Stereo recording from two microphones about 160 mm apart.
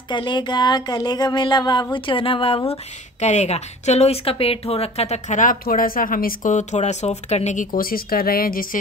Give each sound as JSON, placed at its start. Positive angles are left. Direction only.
{"t": 0.1, "sound": "speech", "side_deg": 30}
{"t": 2.7, "sound": "a woman's voice", "side_deg": 45}